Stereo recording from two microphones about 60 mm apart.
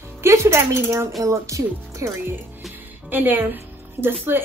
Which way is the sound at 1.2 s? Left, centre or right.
Right.